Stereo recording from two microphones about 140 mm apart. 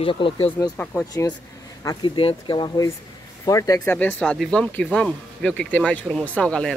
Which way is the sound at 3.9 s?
10° left (ahead or behind).